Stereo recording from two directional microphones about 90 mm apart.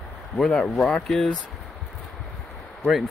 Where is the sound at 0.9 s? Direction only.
5° left (ahead or behind).